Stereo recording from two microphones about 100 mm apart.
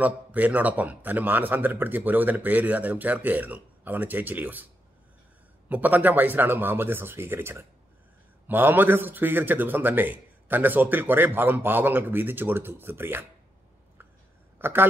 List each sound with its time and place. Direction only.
0.0 s speech: 15° right (ahead or behind)
5.7 s a man's voice: 15° right (ahead or behind)
14.6 s speech: 20° right (ahead or behind)